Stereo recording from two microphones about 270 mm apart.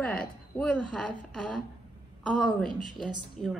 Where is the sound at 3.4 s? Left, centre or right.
Left.